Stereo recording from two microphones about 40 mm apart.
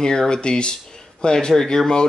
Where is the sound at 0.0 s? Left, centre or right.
Centre.